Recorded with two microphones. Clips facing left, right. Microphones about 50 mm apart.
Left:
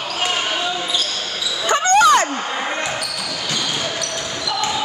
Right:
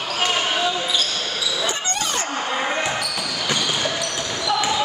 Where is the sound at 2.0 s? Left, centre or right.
Left.